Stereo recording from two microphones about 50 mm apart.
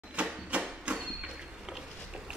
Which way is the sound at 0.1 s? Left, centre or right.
Right.